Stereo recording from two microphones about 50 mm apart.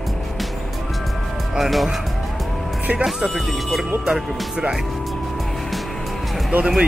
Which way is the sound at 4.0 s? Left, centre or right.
Centre.